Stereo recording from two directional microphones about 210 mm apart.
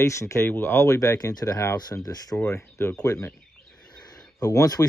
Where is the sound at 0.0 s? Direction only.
15° left (ahead or behind).